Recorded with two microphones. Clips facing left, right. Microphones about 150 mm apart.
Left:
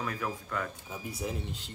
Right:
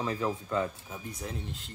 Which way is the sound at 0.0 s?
25° right (ahead or behind).